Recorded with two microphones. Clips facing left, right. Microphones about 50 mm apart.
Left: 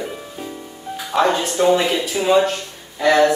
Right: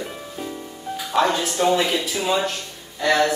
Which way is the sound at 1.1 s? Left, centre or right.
Centre.